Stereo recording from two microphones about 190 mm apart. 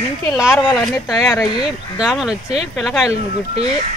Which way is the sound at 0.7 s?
Centre (ahead or behind).